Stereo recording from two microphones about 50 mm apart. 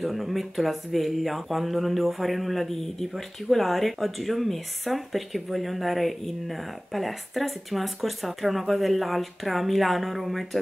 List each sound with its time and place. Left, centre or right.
0.0 s speech: centre